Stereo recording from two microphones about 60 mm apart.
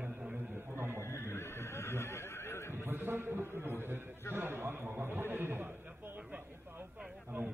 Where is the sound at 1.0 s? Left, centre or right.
Left.